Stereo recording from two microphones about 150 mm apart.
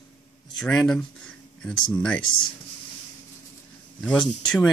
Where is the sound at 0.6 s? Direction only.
5° left (ahead or behind).